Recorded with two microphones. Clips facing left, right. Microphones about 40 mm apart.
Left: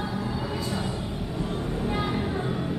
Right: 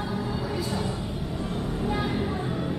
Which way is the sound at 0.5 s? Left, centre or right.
Centre.